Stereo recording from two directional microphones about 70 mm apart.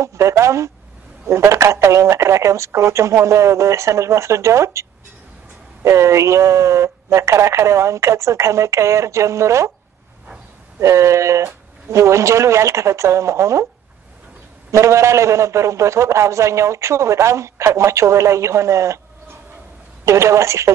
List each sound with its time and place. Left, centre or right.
0.0 s a man's voice: right
10.8 s a man's voice: right
14.7 s a man's voice: right
20.1 s a man's voice: right